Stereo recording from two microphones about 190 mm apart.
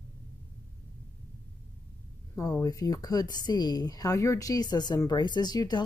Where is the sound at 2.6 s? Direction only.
20° left (ahead or behind).